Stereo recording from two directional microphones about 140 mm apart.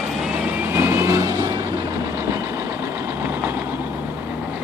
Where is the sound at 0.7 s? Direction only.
20° right (ahead or behind).